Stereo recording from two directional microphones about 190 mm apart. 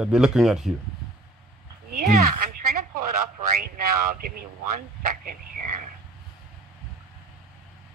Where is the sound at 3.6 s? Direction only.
50° right (ahead or behind).